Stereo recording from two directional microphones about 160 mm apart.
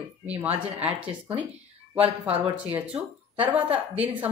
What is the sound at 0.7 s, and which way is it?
Speech, 10° right (ahead or behind).